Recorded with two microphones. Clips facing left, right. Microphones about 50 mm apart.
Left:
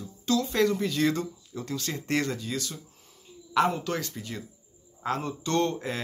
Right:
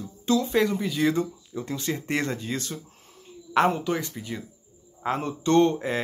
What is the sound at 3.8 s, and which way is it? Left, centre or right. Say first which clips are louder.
Speech: right 3 dB; centre.